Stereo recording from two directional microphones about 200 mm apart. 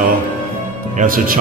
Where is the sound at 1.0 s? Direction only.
45° right (ahead or behind).